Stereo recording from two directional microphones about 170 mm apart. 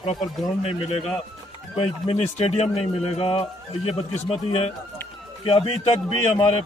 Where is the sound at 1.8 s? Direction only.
35° left (ahead or behind).